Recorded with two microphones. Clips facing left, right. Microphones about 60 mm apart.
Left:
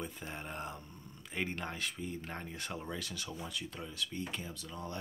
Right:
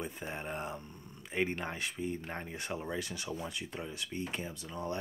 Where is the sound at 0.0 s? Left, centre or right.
Centre.